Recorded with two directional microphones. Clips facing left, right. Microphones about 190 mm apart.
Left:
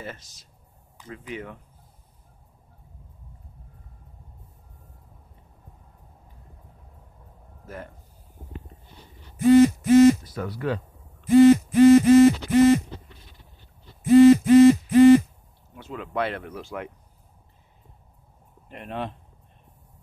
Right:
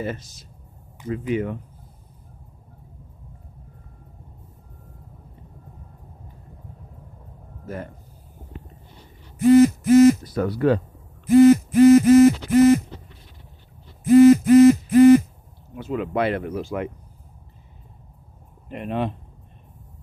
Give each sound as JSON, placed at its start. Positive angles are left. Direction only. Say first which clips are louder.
{"t": 0.9, "sound": "speech", "louder": "right 12 dB", "side_deg": -10}
{"t": 7.6, "sound": "speech", "louder": "right 6 dB", "side_deg": 0}
{"t": 9.5, "sound": "speech", "louder": "right 2 dB", "side_deg": -45}
{"t": 11.3, "sound": "a sound", "louder": "right 2 dB", "side_deg": -45}
{"t": 14.1, "sound": "a sound", "louder": "right 1 dB", "side_deg": -45}
{"t": 15.7, "sound": "speech", "louder": "right 7 dB", "side_deg": -10}
{"t": 18.7, "sound": "speech", "louder": "right 7 dB", "side_deg": -5}